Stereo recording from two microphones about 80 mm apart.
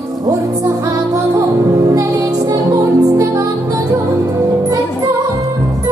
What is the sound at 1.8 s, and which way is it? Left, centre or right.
Music, right.